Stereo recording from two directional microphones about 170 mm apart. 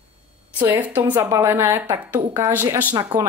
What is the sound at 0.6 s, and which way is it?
Speech, 10° right (ahead or behind).